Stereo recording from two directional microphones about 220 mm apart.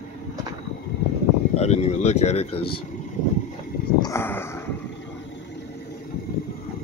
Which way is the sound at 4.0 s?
10° left (ahead or behind).